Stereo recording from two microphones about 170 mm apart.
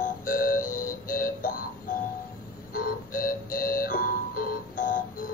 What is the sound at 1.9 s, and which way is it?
Music, 55° left (ahead or behind).